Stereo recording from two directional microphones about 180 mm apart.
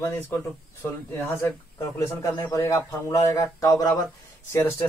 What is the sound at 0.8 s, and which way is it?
Speech, 15° left (ahead or behind).